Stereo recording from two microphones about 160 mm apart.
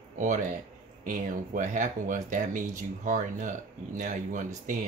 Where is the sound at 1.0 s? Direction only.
55° right (ahead or behind).